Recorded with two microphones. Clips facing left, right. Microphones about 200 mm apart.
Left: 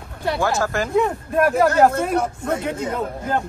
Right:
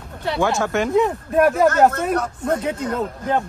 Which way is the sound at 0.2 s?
5° left (ahead or behind).